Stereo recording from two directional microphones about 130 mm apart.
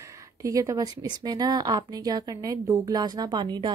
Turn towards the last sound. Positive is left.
turn(degrees=-35)  # may be behind; listen again after turning